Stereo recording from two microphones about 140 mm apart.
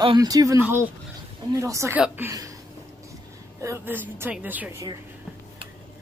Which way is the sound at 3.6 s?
15° right (ahead or behind).